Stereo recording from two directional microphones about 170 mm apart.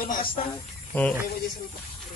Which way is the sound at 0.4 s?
45° left (ahead or behind).